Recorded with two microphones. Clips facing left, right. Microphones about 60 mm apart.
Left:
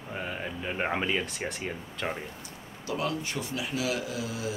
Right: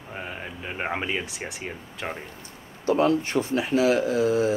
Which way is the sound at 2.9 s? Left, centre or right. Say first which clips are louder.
Right 10 dB; right.